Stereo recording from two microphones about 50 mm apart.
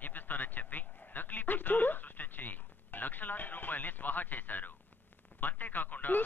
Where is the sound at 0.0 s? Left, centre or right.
Left.